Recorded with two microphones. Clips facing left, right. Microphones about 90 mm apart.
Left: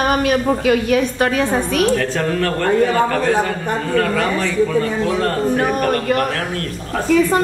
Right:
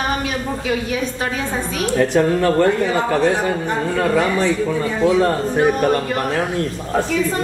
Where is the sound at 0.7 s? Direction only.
65° left (ahead or behind).